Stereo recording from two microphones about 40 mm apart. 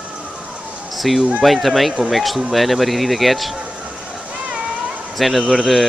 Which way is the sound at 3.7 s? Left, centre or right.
Right.